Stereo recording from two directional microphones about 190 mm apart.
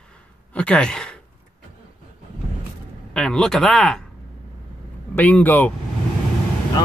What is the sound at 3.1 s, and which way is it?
Speech, 5° left (ahead or behind).